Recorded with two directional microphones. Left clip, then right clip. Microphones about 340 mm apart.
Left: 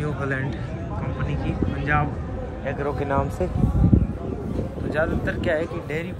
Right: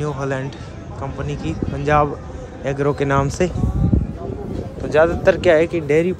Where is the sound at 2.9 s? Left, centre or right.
Left.